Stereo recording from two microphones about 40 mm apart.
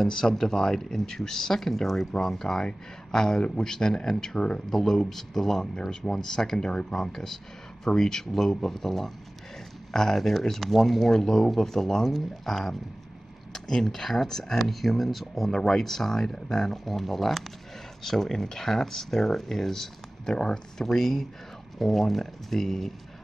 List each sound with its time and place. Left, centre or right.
0.1 s speech: centre
6.7 s speech: left
7.0 s speech: centre